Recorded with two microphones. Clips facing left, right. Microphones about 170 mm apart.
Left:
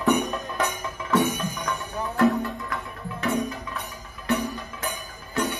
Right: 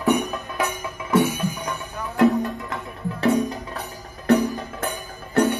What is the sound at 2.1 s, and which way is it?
Music, 20° right (ahead or behind).